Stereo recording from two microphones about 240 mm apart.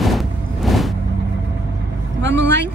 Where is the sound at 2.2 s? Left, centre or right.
Right.